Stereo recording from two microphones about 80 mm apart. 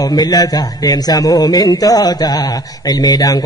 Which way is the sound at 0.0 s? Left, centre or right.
Left.